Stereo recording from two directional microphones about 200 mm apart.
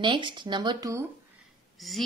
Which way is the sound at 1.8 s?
Centre (ahead or behind).